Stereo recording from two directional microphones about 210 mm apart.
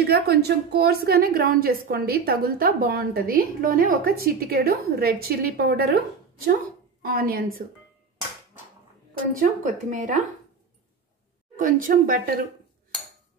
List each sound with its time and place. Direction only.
0.1 s a woman's voice: 50° right (ahead or behind)
9.4 s speech: 40° right (ahead or behind)
11.5 s speech: 40° right (ahead or behind)